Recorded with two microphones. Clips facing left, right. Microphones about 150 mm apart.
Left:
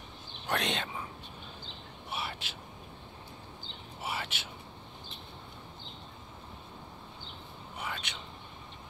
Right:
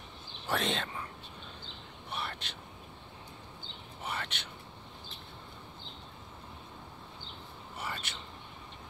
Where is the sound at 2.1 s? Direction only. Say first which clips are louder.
Left 1 dB; 5° left (ahead or behind).